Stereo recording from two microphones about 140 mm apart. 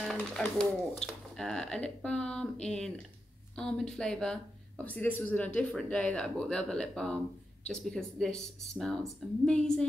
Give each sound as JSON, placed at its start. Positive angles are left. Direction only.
{"t": 0.1, "sound": "speech", "side_deg": 5}